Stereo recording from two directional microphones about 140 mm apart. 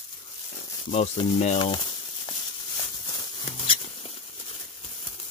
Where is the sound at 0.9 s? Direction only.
50° left (ahead or behind).